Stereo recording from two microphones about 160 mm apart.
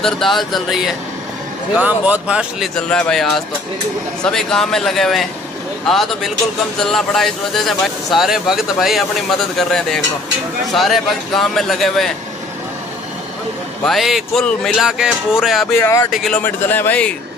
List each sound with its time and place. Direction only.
0.0 s speech: centre (ahead or behind)
2.7 s speech: 5° left (ahead or behind)
13.8 s speech: centre (ahead or behind)
15.8 s speech: 15° left (ahead or behind)
16.1 s speech: centre (ahead or behind)